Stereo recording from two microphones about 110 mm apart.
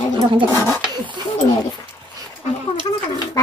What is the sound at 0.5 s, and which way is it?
Speech, 25° left (ahead or behind).